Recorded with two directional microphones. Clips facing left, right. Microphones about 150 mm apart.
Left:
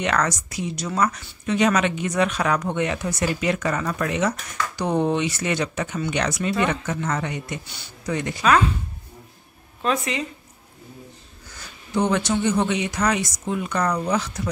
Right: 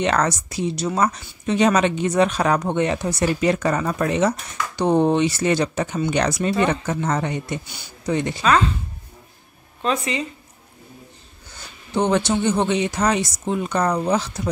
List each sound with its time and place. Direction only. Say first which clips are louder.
0.0 s speech: right 3 dB; 30° right (ahead or behind)
7.6 s speech: right 2 dB; 15° right (ahead or behind)
8.1 s speech: right 4 dB; 25° right (ahead or behind)
8.4 s speech: left 1 dB; 5° left (ahead or behind)
9.8 s speech: right 1 dB; centre (ahead or behind)
11.5 s speech: right 1 dB; 25° right (ahead or behind)